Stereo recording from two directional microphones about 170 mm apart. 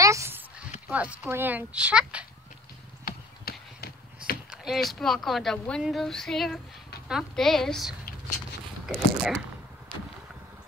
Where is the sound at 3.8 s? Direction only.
65° left (ahead or behind).